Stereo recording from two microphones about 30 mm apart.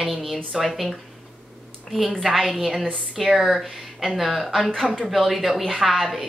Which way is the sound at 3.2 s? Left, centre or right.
Right.